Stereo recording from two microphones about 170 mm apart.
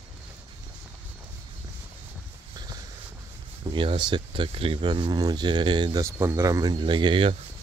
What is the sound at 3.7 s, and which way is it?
Speech, 30° right (ahead or behind).